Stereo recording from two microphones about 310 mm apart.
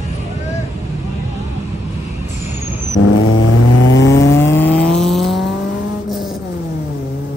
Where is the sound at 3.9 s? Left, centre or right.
Left.